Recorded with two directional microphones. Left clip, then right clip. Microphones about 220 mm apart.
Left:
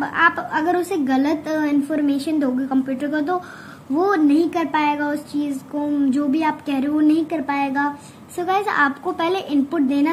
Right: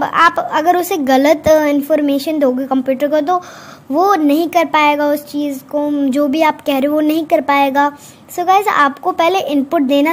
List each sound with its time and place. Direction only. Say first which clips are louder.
0.0 s a woman's voice: right 6 dB; 40° right (ahead or behind)